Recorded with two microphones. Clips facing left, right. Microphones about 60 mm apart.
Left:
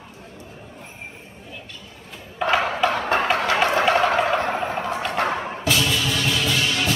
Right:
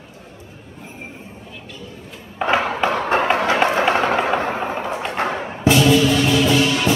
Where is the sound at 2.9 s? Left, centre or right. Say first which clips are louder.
Right 3 dB; centre.